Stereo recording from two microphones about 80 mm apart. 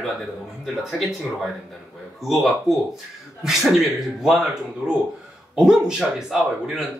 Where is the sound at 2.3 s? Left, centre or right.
Centre.